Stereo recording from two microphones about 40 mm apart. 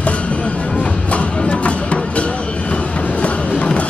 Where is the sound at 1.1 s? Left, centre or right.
Left.